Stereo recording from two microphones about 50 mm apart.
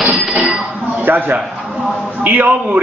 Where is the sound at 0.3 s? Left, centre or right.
Centre.